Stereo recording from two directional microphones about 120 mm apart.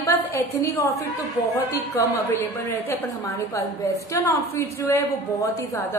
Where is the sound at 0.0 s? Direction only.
25° left (ahead or behind).